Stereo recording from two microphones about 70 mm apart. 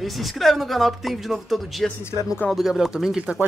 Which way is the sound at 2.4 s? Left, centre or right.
Centre.